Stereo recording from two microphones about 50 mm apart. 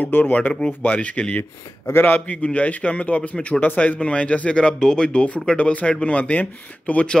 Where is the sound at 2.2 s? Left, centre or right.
Left.